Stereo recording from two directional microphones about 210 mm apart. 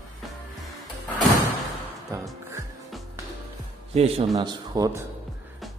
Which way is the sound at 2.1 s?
15° right (ahead or behind).